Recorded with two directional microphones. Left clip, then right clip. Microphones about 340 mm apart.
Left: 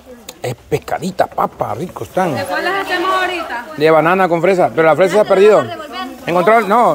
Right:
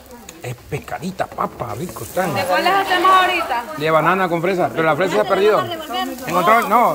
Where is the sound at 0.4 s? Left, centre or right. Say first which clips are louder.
Left 10 dB; centre.